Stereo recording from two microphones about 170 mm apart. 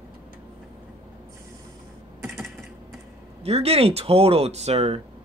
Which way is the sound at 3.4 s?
35° right (ahead or behind).